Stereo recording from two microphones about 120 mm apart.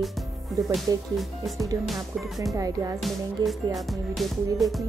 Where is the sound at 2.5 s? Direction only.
30° right (ahead or behind).